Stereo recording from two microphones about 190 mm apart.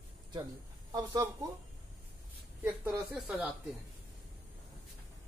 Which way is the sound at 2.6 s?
15° right (ahead or behind).